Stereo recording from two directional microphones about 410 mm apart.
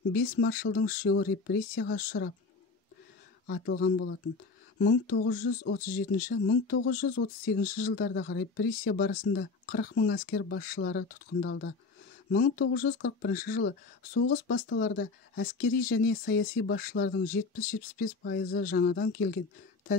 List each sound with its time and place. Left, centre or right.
0.1 s speech: left
3.4 s speech: left